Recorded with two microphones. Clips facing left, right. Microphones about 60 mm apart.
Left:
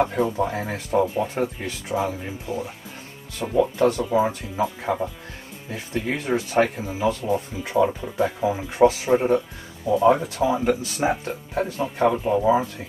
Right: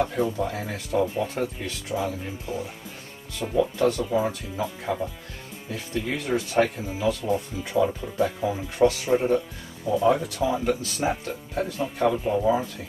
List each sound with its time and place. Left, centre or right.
0.0 s speech: left
2.5 s speech: centre
3.4 s speech: left
4.3 s speech: left